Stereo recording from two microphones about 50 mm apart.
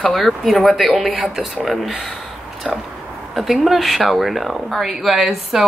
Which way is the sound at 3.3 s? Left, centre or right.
Centre.